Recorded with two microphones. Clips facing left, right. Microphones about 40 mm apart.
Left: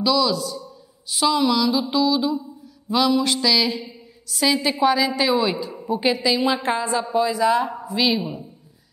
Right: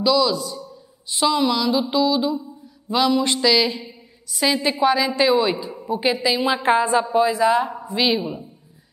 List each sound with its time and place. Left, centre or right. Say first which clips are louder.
0.0 s a woman's voice: right 1 dB; centre